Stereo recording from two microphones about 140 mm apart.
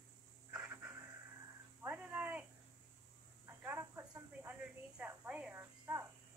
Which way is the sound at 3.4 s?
15° right (ahead or behind).